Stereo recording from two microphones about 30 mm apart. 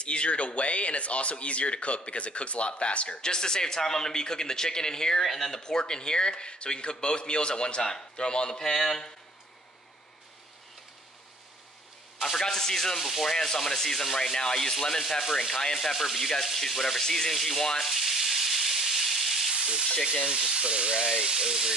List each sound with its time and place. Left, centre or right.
0.0 s speech: left
3.2 s a man's voice: left
5.2 s speech: centre
5.5 s speech: left
12.2 s sanding: centre
13.0 s sanding: centre
15.9 s sanding: centre
17.8 s sizzle: centre
19.6 s speech: centre
20.1 s frying: centre
20.5 s speech: right